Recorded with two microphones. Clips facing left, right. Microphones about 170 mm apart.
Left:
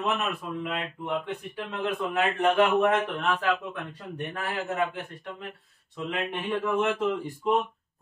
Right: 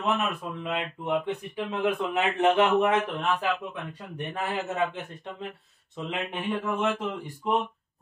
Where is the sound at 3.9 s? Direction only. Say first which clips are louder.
Right 1 dB; 15° right (ahead or behind).